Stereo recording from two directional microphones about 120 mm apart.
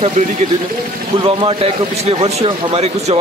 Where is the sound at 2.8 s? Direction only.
65° right (ahead or behind).